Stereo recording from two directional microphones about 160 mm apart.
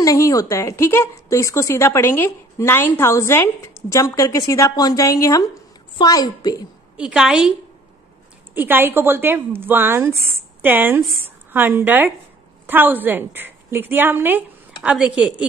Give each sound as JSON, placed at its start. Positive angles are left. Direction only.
{"t": 0.0, "sound": "a woman's voice", "side_deg": 20}
{"t": 7.0, "sound": "a woman's voice", "side_deg": -5}
{"t": 8.5, "sound": "a woman's voice", "side_deg": -10}